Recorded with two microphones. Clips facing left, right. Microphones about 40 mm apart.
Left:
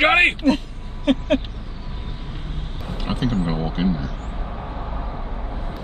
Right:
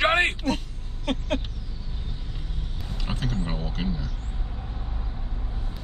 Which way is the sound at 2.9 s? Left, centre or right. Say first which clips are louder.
Left 8 dB; left.